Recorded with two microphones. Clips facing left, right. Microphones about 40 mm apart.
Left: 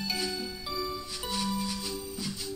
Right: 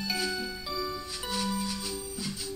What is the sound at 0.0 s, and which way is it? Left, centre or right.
Music, centre.